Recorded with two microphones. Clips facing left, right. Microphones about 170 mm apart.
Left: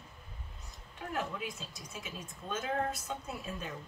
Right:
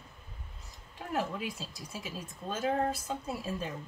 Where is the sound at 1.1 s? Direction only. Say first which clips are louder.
Right 4 dB; 35° right (ahead or behind).